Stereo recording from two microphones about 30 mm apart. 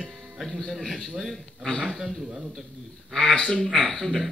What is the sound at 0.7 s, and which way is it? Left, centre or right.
A man's voice, centre.